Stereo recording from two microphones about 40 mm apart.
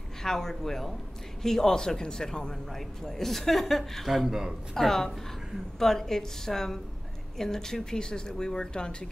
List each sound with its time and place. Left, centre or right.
0.2 s speech: centre
2.7 s speech: centre
4.7 s speech: centre